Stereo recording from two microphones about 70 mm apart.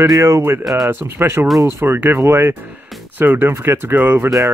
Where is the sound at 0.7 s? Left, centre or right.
Centre.